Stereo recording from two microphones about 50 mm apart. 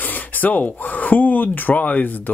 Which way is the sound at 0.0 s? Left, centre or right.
Left.